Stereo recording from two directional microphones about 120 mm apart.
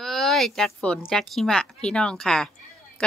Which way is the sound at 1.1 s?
Centre (ahead or behind).